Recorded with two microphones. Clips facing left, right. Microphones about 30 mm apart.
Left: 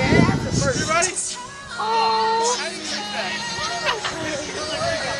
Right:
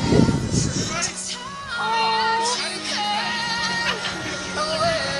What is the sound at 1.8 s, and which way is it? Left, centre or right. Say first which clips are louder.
Music: left 2 dB; centre.